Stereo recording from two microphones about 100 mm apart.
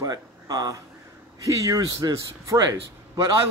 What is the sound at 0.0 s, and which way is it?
A man's voice, 40° right (ahead or behind).